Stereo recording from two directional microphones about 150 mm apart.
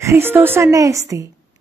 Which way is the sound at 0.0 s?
15° right (ahead or behind).